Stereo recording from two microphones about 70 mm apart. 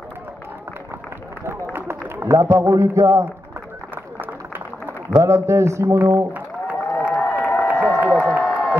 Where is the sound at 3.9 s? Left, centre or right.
Right.